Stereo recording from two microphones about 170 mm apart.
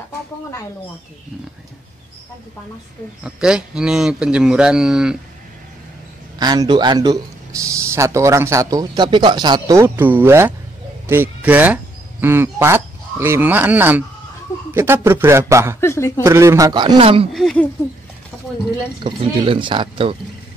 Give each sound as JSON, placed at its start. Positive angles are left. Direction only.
{"t": 3.3, "sound": "a man's voice", "side_deg": -5}
{"t": 6.4, "sound": "speech", "side_deg": -25}
{"t": 15.8, "sound": "speech", "side_deg": 15}
{"t": 16.2, "sound": "speech", "side_deg": -15}
{"t": 17.3, "sound": "a man's voice", "side_deg": 0}
{"t": 19.0, "sound": "speech", "side_deg": -30}